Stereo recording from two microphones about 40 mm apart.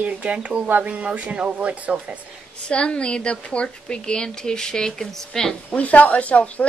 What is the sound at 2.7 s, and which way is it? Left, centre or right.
Speech, left.